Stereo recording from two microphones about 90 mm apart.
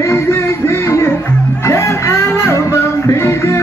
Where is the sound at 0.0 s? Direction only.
30° left (ahead or behind).